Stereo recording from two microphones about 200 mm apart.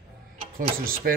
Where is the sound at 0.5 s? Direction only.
45° right (ahead or behind).